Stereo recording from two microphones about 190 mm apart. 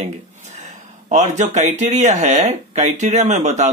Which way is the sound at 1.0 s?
40° right (ahead or behind).